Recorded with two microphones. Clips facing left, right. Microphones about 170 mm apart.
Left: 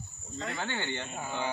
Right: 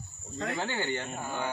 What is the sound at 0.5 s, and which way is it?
Speech, 10° right (ahead or behind).